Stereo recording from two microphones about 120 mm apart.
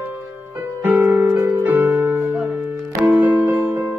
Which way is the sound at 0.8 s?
20° right (ahead or behind).